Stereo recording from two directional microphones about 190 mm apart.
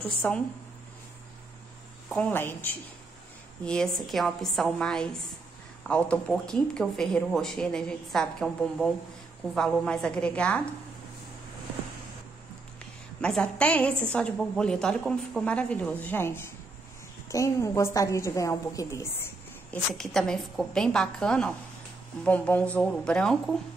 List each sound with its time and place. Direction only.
0.0 s speech: 5° left (ahead or behind)
2.0 s a woman's voice: 5° left (ahead or behind)
13.2 s a woman's voice: 5° left (ahead or behind)
19.7 s a woman's voice: centre (ahead or behind)